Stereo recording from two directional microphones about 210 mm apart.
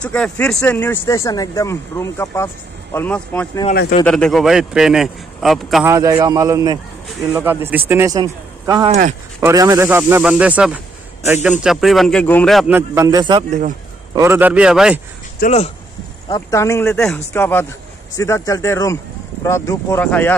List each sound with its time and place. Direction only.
0.0 s a man's voice: 5° left (ahead or behind)
5.9 s a man's voice: 15° right (ahead or behind); by 12.7 s centre (ahead or behind)
12.7 s speech: 15° right (ahead or behind)
13.5 s speech: 35° right (ahead or behind)
14.1 s a man's voice: 10° right (ahead or behind)
15.4 s speech: 30° left (ahead or behind)
16.3 s speech: 15° left (ahead or behind)